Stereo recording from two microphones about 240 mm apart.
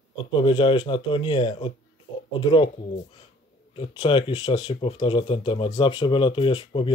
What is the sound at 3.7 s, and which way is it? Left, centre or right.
Speech, left.